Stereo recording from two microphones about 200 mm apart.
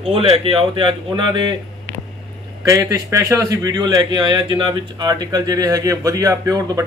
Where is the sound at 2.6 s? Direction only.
15° right (ahead or behind).